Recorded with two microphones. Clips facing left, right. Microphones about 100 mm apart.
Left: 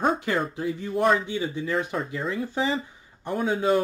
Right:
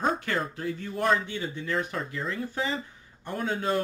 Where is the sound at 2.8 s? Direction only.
15° left (ahead or behind).